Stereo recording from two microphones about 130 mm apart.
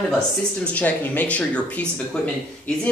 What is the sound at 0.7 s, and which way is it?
Speech, 10° left (ahead or behind).